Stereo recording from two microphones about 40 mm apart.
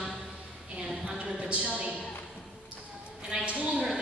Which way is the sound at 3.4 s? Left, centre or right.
Right.